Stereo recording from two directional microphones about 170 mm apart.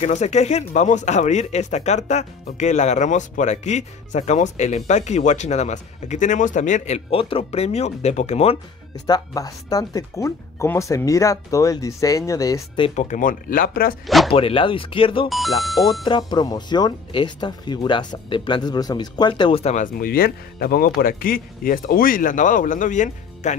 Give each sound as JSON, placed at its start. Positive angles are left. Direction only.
{"t": 0.0, "sound": "speech", "side_deg": 45}
{"t": 8.9, "sound": "speech", "side_deg": 20}
{"t": 12.8, "sound": "speech", "side_deg": 45}
{"t": 14.0, "sound": "speech", "side_deg": 0}
{"t": 14.3, "sound": "speech", "side_deg": 30}
{"t": 15.2, "sound": "speech", "side_deg": 0}
{"t": 16.1, "sound": "speech", "side_deg": 25}
{"t": 19.6, "sound": "speech", "side_deg": 45}